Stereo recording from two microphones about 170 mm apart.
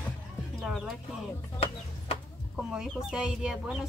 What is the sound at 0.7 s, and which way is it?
Speech, centre (ahead or behind).